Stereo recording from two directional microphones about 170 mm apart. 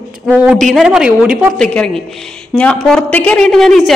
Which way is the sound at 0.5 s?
Centre (ahead or behind).